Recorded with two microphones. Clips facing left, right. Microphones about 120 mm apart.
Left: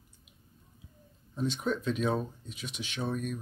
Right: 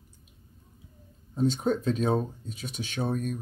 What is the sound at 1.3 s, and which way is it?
Speech, 40° right (ahead or behind).